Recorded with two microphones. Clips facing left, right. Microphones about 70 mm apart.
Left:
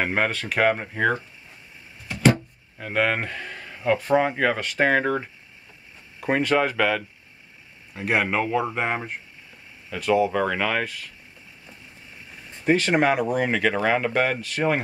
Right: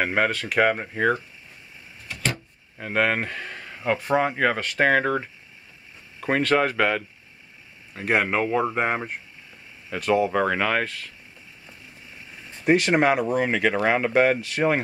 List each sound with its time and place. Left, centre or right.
0.5 s speech: centre
2.8 s speech: centre
7.9 s speech: centre
10.3 s speech: centre
12.6 s speech: centre